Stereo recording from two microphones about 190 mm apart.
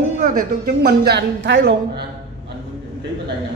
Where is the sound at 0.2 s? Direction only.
50° right (ahead or behind); by 2.0 s 65° right (ahead or behind).